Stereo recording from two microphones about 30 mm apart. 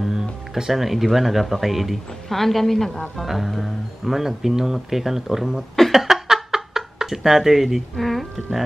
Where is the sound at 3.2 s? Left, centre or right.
Centre.